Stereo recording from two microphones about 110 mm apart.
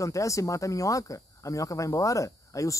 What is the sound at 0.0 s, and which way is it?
Speech, 30° left (ahead or behind).